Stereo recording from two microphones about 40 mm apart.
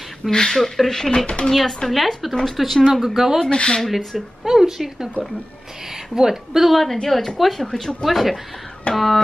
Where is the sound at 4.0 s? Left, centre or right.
Centre.